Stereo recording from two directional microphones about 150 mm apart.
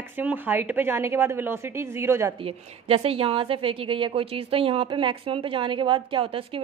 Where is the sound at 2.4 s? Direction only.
40° right (ahead or behind).